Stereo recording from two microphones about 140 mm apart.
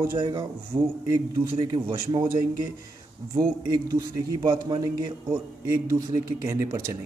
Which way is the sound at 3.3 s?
30° right (ahead or behind).